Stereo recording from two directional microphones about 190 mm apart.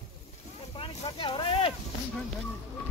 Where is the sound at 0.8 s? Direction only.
25° left (ahead or behind).